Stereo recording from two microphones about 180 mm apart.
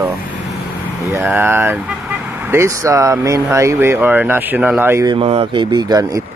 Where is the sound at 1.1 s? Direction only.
10° right (ahead or behind).